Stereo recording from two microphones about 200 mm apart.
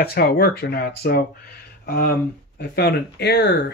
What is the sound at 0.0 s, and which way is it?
Speech, 50° left (ahead or behind).